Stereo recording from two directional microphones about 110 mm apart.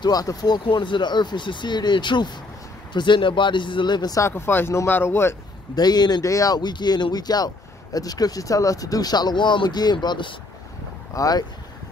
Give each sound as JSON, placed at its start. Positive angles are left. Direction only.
{"t": 0.0, "sound": "speech", "side_deg": 35}
{"t": 4.3, "sound": "speech", "side_deg": 20}
{"t": 5.8, "sound": "speech", "side_deg": 40}
{"t": 11.1, "sound": "speech", "side_deg": 35}